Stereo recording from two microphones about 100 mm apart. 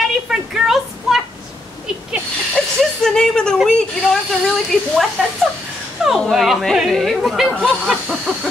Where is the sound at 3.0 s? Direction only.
5° left (ahead or behind).